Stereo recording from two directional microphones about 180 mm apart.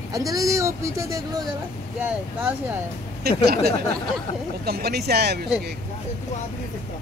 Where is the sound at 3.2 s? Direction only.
60° right (ahead or behind).